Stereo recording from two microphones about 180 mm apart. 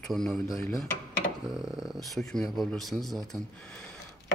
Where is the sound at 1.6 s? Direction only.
5° right (ahead or behind).